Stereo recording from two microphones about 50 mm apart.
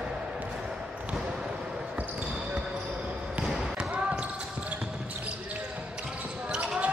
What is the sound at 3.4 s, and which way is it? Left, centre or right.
Basketball bounce, centre.